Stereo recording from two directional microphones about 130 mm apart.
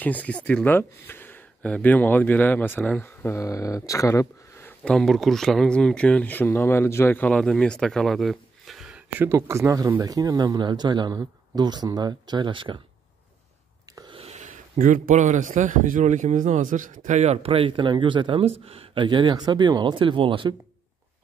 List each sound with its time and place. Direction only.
0.0 s speech: 10° left (ahead or behind)
4.8 s speech: 5° left (ahead or behind)
9.2 s speech: 20° right (ahead or behind); by 12.8 s 40° right (ahead or behind)
14.1 s speech: 55° right (ahead or behind); by 20.5 s 40° right (ahead or behind)